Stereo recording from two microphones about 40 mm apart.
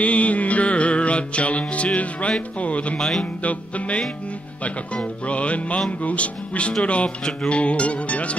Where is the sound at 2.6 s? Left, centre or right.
Left.